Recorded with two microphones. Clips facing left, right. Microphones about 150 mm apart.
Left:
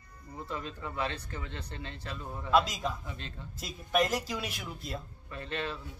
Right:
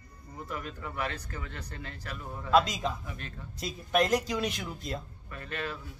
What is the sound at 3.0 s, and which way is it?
Speech, 25° left (ahead or behind).